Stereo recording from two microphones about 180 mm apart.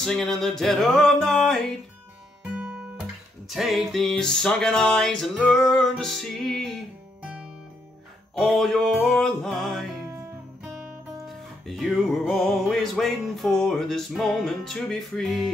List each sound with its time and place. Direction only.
0.0 s music: centre (ahead or behind)
8.4 s music: centre (ahead or behind)
11.2 s music: centre (ahead or behind)